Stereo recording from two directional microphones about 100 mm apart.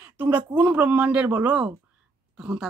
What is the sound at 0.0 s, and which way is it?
A man's voice, 15° right (ahead or behind).